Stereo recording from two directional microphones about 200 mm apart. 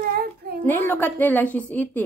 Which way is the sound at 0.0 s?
50° right (ahead or behind).